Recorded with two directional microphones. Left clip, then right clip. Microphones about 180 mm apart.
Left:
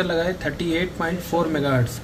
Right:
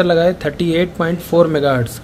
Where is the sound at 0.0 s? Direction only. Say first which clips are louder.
Right 9 dB; 85° right.